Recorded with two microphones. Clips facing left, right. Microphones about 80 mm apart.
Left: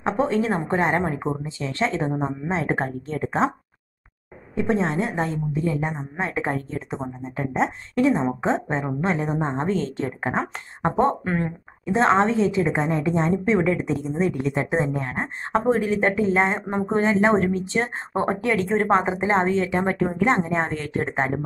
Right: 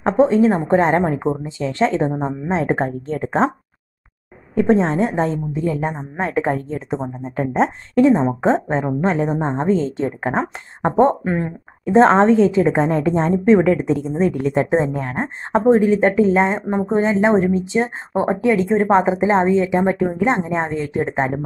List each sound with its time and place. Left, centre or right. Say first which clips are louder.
0.2 s a woman's voice: right 9 dB; right
4.6 s a woman's voice: right 7 dB; right
7.2 s speech: right 5 dB; right
7.9 s a woman's voice: right 7 dB; right
11.2 s a woman's voice: right 4 dB; centre
11.8 s a woman's voice: right 7 dB; right
16.7 s a woman's voice: right 5 dB; centre
17.0 s a woman's voice: right 3 dB; centre